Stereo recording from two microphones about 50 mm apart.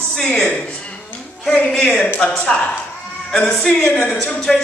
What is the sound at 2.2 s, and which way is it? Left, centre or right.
A man's voice, centre.